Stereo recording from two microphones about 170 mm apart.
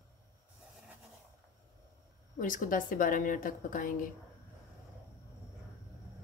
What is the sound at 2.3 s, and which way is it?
Speech, 50° left (ahead or behind).